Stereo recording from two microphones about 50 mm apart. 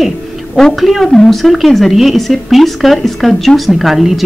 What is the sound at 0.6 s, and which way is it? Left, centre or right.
A woman's voice, centre.